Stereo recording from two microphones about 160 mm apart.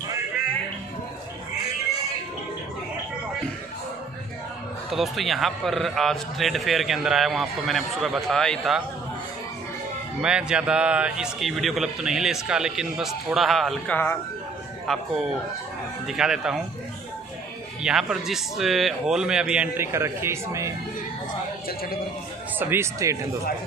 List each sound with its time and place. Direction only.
4.9 s a man's voice: centre (ahead or behind)
10.2 s a man's voice: 5° right (ahead or behind)
16.1 s a man's voice: 5° right (ahead or behind)
17.8 s a man's voice: 5° right (ahead or behind)
22.6 s speech: 15° right (ahead or behind)